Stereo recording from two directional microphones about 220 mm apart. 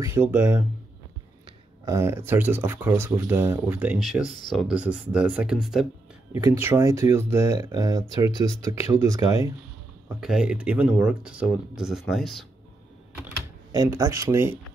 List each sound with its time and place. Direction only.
0.0 s speech: 10° right (ahead or behind)
1.9 s speech: 10° right (ahead or behind)
6.3 s speech: 10° right (ahead or behind)
10.0 s speech: 5° right (ahead or behind)
13.7 s speech: 15° right (ahead or behind)